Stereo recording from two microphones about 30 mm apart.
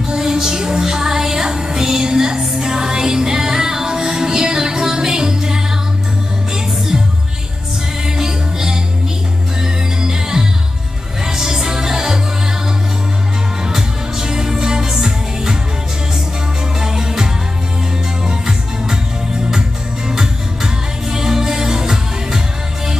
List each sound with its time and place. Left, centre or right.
0.1 s music: centre
8.0 s music: centre
13.7 s music: centre
16.8 s music: centre
20.1 s music: right